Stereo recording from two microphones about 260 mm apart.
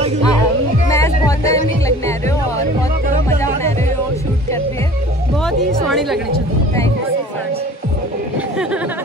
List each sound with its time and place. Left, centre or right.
0.8 s music: centre
5.4 s music: centre